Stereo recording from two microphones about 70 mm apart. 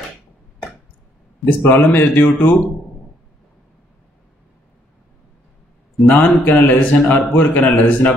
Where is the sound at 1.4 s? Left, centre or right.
Left.